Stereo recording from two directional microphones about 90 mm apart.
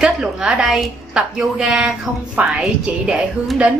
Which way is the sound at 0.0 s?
10° right (ahead or behind).